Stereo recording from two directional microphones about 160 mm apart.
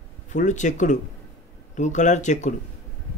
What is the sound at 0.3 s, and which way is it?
Speech, 50° left (ahead or behind).